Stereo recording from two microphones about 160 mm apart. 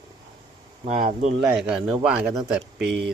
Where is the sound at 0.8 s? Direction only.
55° right (ahead or behind).